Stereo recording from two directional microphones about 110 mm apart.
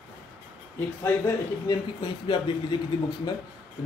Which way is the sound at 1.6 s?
45° left (ahead or behind).